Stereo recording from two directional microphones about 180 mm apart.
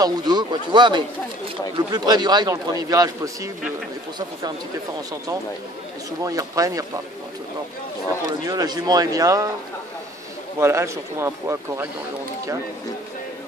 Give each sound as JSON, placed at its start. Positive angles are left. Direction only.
{"t": 0.0, "sound": "speech", "side_deg": -25}
{"t": 6.2, "sound": "speech", "side_deg": -20}
{"t": 8.5, "sound": "speech", "side_deg": -20}
{"t": 10.6, "sound": "speech", "side_deg": -15}